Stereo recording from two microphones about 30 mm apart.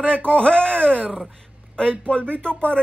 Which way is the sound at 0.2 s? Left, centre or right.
Left.